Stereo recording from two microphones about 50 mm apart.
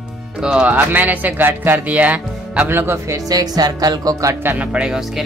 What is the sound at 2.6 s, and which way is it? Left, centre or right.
Speech, right.